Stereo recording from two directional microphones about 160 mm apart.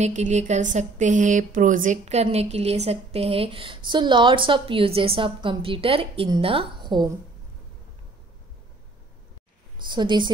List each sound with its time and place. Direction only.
0.0 s speech: 45° right (ahead or behind); by 7.1 s 30° right (ahead or behind)
9.8 s speech: 30° right (ahead or behind)